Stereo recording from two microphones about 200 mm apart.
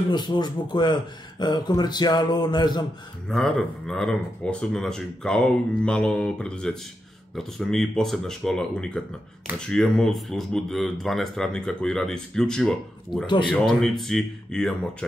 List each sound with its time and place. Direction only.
0.1 s a man's voice: 20° left (ahead or behind)
3.3 s speech: 5° left (ahead or behind)